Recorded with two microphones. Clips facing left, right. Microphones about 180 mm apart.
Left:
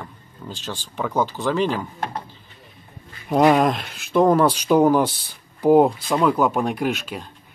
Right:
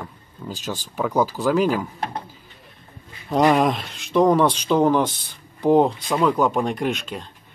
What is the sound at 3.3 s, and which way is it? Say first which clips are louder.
Speech: left 1 dB; centre (ahead or behind).